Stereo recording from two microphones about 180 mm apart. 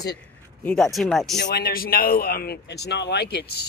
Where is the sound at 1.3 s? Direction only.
65° left (ahead or behind).